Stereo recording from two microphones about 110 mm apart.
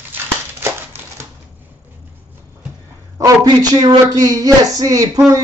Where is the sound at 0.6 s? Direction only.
25° right (ahead or behind).